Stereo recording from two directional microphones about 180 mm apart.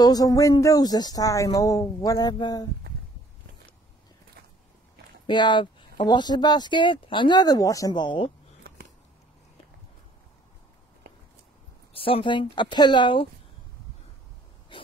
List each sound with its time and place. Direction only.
0.0 s speech: 20° left (ahead or behind)
5.2 s speech: 25° left (ahead or behind)
11.9 s speech: 30° left (ahead or behind)
14.7 s a sound: 25° left (ahead or behind)